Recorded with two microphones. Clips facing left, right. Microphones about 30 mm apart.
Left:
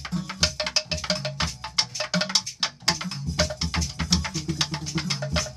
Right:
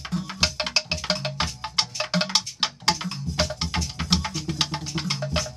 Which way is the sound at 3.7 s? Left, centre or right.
Centre.